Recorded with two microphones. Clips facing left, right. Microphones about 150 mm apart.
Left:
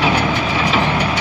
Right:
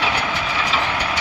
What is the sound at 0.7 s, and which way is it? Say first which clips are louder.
Vehicle: left 7 dB; 15° left (ahead or behind).